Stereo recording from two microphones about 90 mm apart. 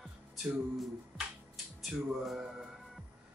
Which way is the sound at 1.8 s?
5° right (ahead or behind).